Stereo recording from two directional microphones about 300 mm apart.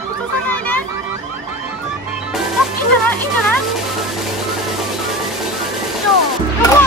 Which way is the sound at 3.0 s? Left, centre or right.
Centre.